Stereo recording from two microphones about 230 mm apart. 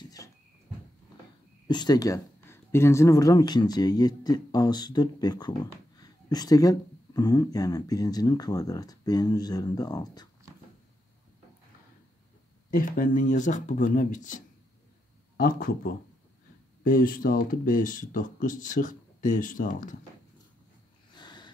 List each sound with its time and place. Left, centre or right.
1.7 s speech: centre
12.7 s speech: left
21.1 s a sound: centre